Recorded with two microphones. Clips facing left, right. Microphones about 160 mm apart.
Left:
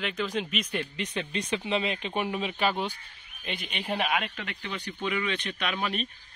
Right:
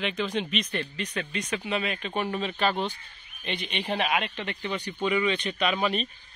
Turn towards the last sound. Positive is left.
turn(degrees=0)  # may be behind; listen again after turning